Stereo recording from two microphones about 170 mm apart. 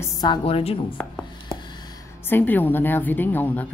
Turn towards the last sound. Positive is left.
turn(degrees=10)  # may be behind; listen again after turning